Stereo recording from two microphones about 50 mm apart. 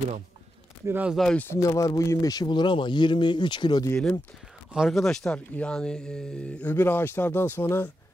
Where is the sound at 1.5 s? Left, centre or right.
Left.